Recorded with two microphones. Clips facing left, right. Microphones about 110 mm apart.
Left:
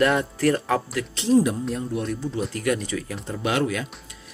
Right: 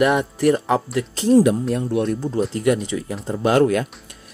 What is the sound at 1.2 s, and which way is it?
Speech, 40° right (ahead or behind).